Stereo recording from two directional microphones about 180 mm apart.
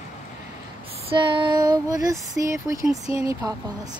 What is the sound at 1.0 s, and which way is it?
Female singing, 30° right (ahead or behind).